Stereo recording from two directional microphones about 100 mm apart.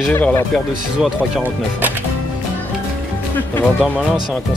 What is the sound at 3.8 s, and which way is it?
Speech, centre (ahead or behind).